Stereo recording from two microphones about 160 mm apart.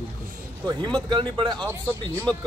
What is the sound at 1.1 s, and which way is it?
Speech, 30° right (ahead or behind).